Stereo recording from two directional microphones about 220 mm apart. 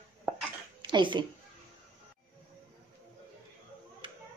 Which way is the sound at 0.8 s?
20° right (ahead or behind).